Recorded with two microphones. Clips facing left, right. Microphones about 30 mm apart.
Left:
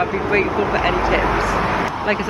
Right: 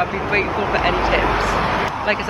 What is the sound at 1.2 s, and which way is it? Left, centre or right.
Speech, right.